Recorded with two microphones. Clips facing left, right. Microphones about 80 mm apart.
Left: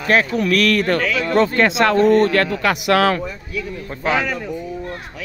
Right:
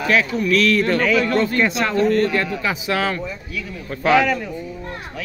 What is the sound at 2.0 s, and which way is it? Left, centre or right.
Speech, left.